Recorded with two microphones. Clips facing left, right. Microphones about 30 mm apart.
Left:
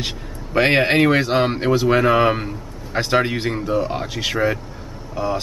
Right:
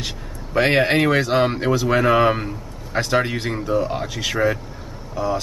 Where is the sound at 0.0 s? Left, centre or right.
Centre.